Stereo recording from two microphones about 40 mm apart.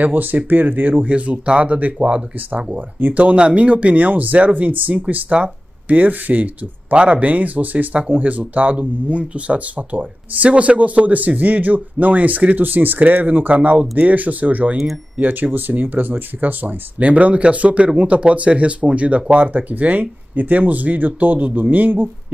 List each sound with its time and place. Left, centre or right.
0.0 s speech: right
1.0 s speech: right
3.3 s speech: right
5.3 s a sound: right
5.9 s speech: right
17.1 s speech: right